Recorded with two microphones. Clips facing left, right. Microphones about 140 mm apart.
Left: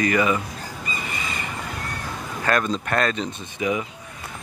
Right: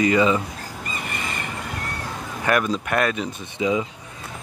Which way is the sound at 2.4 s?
10° right (ahead or behind).